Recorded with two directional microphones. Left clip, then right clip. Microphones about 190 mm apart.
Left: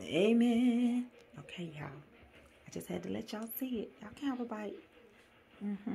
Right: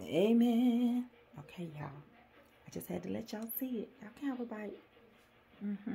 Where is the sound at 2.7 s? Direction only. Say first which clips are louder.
Left 1 dB; 10° right (ahead or behind).